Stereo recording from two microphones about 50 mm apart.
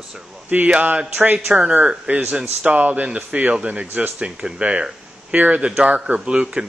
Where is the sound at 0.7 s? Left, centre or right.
Right.